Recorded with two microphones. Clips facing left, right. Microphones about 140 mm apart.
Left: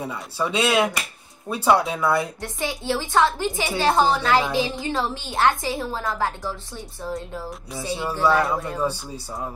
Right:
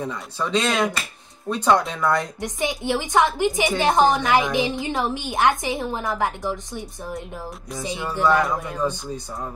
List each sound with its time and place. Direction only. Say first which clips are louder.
0.0 s speech: left 1 dB; 10° left (ahead or behind)
2.4 s a woman's voice: right 2 dB; 15° right (ahead or behind)
8.0 s speech: right 1 dB; 10° left (ahead or behind)